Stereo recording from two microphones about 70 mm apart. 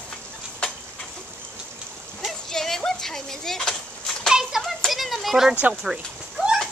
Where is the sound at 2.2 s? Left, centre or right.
Centre.